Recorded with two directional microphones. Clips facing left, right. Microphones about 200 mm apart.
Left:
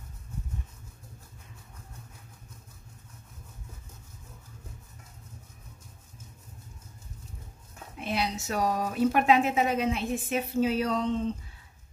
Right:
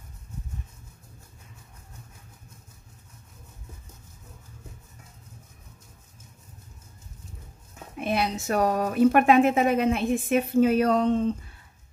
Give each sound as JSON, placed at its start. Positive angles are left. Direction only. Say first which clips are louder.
{"t": 8.0, "sound": "a woman's voice", "louder": "right 4 dB", "side_deg": -55}